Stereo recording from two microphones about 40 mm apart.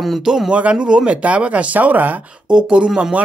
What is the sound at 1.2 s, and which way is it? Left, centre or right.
Speech, right.